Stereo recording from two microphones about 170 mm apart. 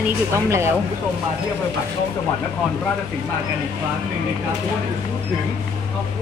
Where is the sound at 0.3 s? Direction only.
15° right (ahead or behind).